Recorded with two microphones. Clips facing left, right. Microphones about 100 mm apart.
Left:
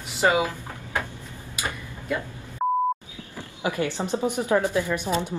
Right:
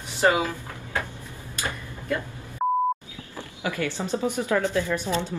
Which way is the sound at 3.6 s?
20° left (ahead or behind).